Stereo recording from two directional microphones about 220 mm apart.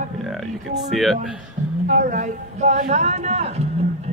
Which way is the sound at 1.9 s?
35° right (ahead or behind).